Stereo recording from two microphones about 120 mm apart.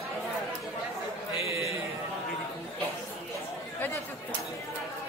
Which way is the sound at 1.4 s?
25° right (ahead or behind).